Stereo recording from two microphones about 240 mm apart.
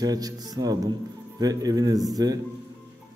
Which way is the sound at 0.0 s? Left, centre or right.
Centre.